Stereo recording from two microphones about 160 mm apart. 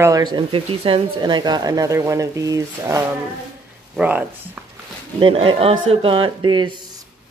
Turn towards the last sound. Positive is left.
turn(degrees=-30)  # may be behind; listen again after turning